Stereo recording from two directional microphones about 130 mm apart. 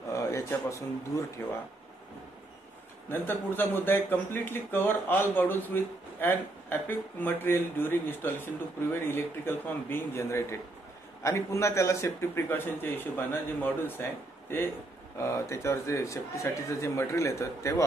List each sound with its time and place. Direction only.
0.1 s a man's voice: 25° left (ahead or behind)
3.1 s a man's voice: 15° left (ahead or behind)
15.1 s a man's voice: 20° left (ahead or behind)